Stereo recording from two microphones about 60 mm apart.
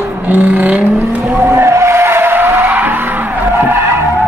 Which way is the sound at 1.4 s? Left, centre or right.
Right.